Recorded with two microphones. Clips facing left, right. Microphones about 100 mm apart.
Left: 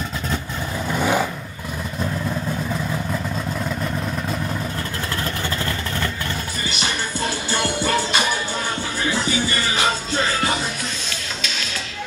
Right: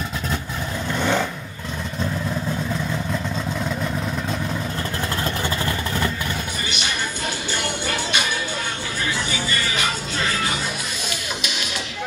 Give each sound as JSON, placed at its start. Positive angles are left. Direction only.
{"t": 0.8, "sound": "vehicle", "side_deg": 5}
{"t": 2.7, "sound": "vehicle", "side_deg": 5}
{"t": 5.2, "sound": "vehicle", "side_deg": -20}
{"t": 7.5, "sound": "music", "side_deg": 35}
{"t": 9.5, "sound": "music", "side_deg": 30}